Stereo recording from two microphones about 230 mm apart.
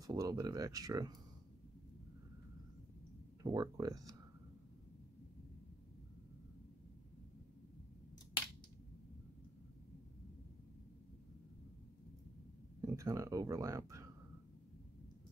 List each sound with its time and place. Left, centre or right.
0.0 s speech: centre
3.4 s speech: centre
12.8 s speech: centre